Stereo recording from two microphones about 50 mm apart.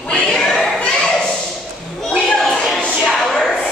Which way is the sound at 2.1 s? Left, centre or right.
Centre.